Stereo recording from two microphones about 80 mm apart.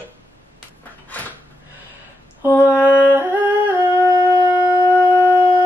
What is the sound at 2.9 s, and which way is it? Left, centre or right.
Yodeling, right.